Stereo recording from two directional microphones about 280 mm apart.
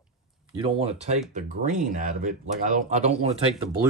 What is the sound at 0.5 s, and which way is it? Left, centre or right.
Speech, right.